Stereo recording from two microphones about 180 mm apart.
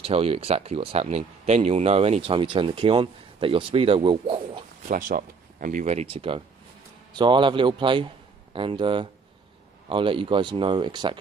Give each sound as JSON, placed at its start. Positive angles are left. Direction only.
{"t": 0.0, "sound": "speech", "side_deg": -35}
{"t": 4.8, "sound": "speech", "side_deg": -50}